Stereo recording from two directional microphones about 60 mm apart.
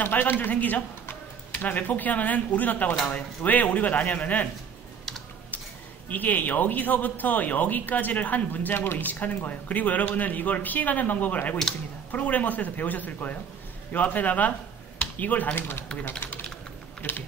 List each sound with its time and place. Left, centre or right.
0.0 s speech: left
6.0 s speech: left